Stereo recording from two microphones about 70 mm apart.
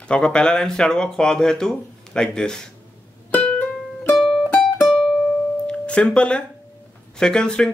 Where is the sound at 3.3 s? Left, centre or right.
Centre.